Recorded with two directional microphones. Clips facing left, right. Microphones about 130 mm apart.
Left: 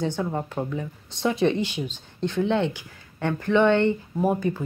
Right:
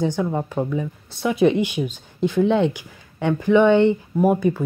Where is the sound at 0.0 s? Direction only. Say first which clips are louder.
Right 4 dB; 15° right (ahead or behind).